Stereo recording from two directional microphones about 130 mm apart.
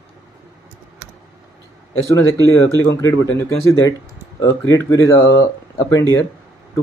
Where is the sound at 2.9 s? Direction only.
25° left (ahead or behind).